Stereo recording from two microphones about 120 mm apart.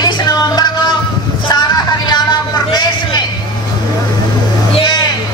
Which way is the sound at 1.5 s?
35° left (ahead or behind).